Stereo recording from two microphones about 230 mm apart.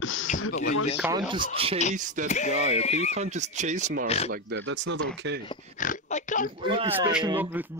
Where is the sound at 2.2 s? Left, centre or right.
Left.